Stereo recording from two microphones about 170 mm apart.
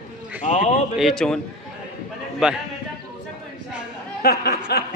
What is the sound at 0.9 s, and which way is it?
Speech, centre (ahead or behind).